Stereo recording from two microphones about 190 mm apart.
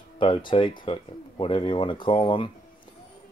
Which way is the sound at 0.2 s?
25° left (ahead or behind).